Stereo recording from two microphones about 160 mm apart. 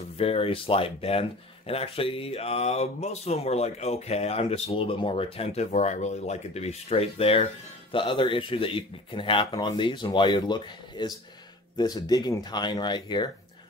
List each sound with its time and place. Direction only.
0.2 s speech: 35° left (ahead or behind)